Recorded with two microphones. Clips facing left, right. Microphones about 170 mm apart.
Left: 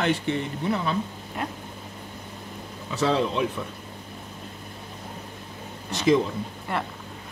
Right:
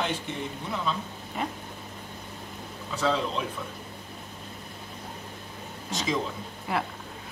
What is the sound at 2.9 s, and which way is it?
Speech, 65° left (ahead or behind).